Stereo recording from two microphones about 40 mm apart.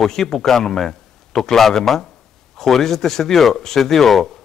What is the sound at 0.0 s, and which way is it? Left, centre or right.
Speech, centre.